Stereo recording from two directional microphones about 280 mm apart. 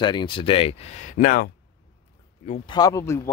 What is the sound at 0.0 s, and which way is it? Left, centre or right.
Speech, centre.